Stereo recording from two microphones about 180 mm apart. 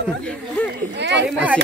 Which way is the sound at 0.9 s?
75° right (ahead or behind).